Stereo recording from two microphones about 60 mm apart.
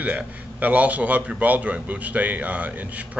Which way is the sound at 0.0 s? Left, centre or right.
Right.